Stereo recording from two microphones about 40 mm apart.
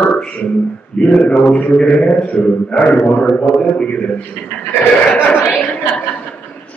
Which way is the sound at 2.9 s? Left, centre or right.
Left.